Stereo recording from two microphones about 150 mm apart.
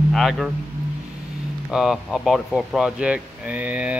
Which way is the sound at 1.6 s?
5° right (ahead or behind).